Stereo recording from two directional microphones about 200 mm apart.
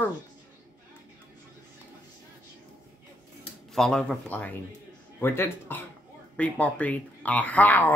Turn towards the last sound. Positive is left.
turn(degrees=10)  # may be behind; listen again after turning